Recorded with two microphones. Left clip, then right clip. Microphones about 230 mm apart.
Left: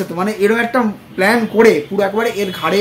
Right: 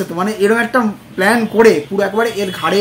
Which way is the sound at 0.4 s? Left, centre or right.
Centre.